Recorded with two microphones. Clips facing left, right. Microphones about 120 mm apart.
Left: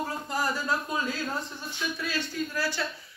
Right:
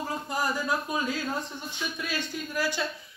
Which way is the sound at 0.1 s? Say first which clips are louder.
Even; 15° right (ahead or behind).